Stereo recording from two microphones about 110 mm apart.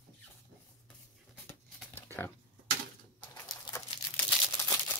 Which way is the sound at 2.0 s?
20° left (ahead or behind).